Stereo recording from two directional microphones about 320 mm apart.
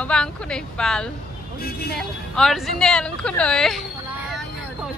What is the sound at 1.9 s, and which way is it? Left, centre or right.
Speech, centre.